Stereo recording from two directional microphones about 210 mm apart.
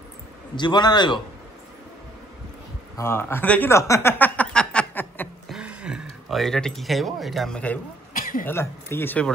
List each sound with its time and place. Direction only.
0.6 s a man's voice: 20° left (ahead or behind)
3.0 s a sound: 10° left (ahead or behind)
5.6 s speech: 5° right (ahead or behind)
8.1 s cough: 40° left (ahead or behind)
8.5 s speech: 10° left (ahead or behind)